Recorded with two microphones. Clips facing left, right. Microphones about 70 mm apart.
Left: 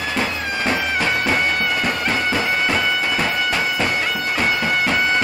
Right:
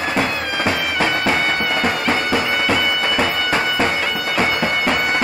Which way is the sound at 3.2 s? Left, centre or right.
Right.